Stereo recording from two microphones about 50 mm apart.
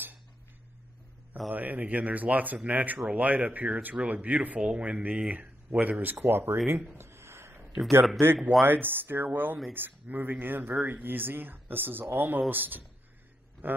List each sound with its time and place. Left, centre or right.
1.5 s speech: right
7.0 s a sound: right
8.4 s speech: centre
8.6 s speech: right